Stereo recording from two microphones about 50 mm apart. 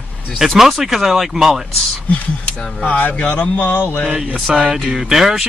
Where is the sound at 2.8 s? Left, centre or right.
Left.